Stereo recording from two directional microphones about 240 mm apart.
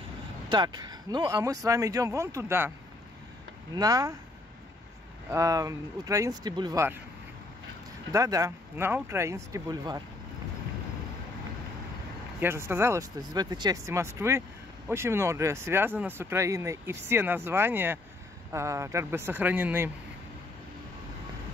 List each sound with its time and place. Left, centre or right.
0.5 s speech: centre
3.7 s speech: centre
5.3 s speech: centre
8.1 s speech: centre
12.4 s speech: centre